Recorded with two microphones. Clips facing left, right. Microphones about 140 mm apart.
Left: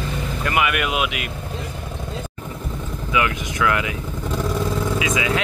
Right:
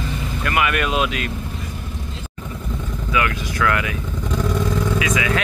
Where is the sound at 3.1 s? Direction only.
20° left (ahead or behind).